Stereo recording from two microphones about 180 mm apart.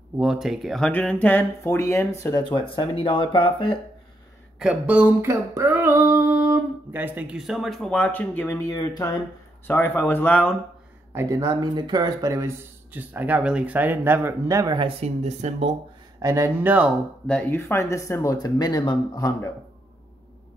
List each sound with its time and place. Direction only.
0.2 s speech: 5° right (ahead or behind); by 3.7 s 30° left (ahead or behind)
4.6 s a sound: 5° right (ahead or behind); by 9.2 s 20° left (ahead or behind)
9.7 s speech: 10° left (ahead or behind)
11.1 s speech: 15° right (ahead or behind); by 15.7 s 40° right (ahead or behind)
16.2 s speech: 15° right (ahead or behind)
17.3 s speech: 10° left (ahead or behind)